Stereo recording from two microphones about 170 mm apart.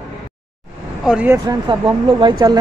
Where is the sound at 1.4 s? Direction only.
25° right (ahead or behind).